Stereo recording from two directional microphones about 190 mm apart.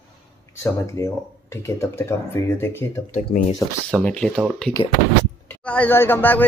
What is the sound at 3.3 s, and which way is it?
Speech, 50° left (ahead or behind).